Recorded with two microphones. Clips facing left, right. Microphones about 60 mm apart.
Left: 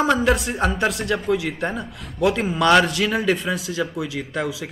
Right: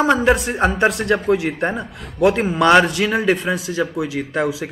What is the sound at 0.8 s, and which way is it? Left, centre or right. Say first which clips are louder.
Speech: right 5 dB; right.